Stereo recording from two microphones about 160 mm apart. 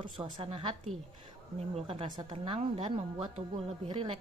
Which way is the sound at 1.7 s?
40° right (ahead or behind).